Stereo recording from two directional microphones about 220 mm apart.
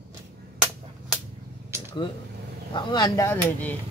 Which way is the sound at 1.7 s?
10° right (ahead or behind).